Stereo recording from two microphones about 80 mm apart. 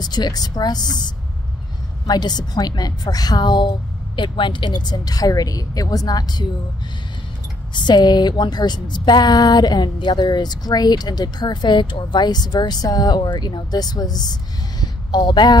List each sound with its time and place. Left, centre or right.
0.0 s a woman's voice: left
7.7 s a woman's voice: left